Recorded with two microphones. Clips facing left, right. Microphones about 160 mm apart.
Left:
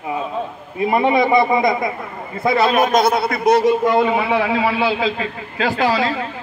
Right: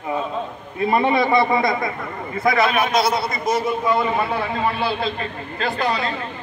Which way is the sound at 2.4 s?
35° left (ahead or behind).